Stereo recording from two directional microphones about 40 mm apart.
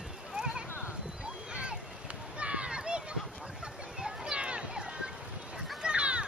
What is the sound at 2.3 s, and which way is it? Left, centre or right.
Children playing, right.